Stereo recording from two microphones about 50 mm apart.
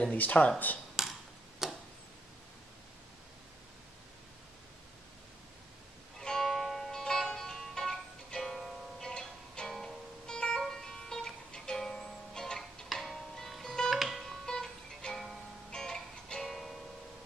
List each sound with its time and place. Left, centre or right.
0.1 s speech: left
1.0 s tick-tock: centre
6.1 s music: centre
9.0 s music: centre
13.9 s music: centre
14.2 s music: centre